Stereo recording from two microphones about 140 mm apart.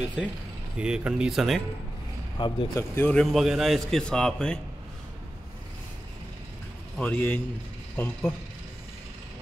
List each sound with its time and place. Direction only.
0.7 s a man's voice: 5° right (ahead or behind)
2.3 s speech: 35° left (ahead or behind)
3.0 s a man's voice: 10° left (ahead or behind)
3.3 s a man's voice: centre (ahead or behind)
7.0 s a man's voice: 10° left (ahead or behind)